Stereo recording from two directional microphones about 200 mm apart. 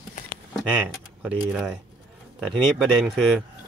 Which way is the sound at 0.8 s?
5° right (ahead or behind).